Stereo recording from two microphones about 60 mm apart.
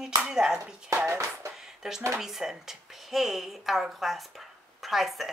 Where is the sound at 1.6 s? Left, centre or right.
Centre.